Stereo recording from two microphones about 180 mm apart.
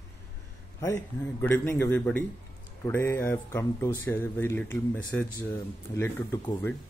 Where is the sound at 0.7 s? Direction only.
15° left (ahead or behind).